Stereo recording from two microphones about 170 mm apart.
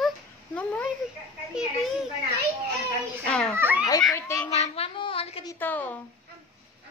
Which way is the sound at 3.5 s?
10° right (ahead or behind).